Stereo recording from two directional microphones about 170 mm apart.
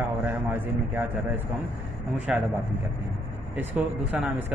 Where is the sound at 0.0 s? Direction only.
10° right (ahead or behind).